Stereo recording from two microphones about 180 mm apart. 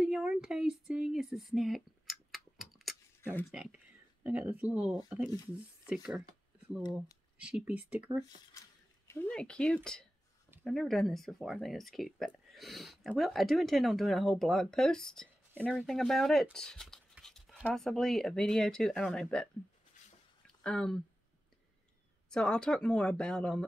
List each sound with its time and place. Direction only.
0.0 s a sound: 5° right (ahead or behind)
3.2 s speech: 15° left (ahead or behind)
3.5 s speech: 5° right (ahead or behind)
6.8 s speech: 20° left (ahead or behind)
7.4 s speech: 5° right (ahead or behind)
8.5 s speech: 15° left (ahead or behind)
20.6 s speech: 5° left (ahead or behind)
22.3 s speech: 5° left (ahead or behind)